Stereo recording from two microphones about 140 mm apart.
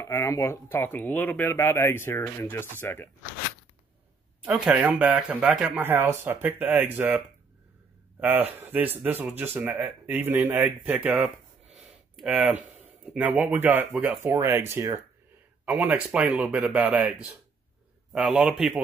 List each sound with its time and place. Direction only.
0.0 s speech: 20° left (ahead or behind)
4.4 s speech: 5° right (ahead or behind)
8.2 s speech: 10° right (ahead or behind)
11.7 s a sound: centre (ahead or behind)
13.0 s speech: 10° right (ahead or behind)
18.1 s speech: 5° right (ahead or behind)